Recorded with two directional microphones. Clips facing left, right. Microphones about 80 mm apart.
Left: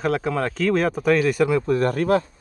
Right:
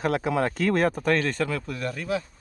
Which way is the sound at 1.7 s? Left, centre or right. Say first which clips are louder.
Left 10 dB; left.